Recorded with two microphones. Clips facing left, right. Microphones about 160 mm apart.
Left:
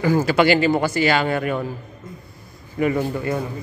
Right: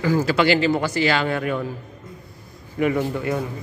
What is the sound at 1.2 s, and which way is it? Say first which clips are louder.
Speech: left 1 dB; 5° left (ahead or behind).